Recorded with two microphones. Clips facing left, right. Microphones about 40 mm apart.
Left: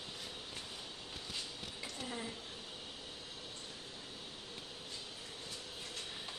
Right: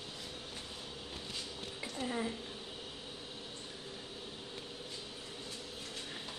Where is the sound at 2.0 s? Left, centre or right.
Centre.